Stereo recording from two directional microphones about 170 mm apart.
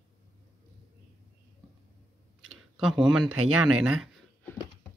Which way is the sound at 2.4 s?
Centre (ahead or behind).